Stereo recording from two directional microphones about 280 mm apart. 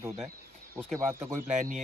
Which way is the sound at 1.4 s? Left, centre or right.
Right.